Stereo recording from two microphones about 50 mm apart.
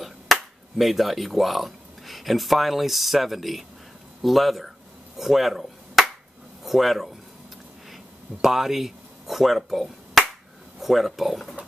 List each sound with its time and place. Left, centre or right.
0.0 s speech: centre
4.2 s chop: centre
6.6 s speech: centre